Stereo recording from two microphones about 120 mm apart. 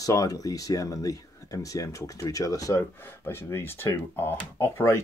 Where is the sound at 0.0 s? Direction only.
30° left (ahead or behind).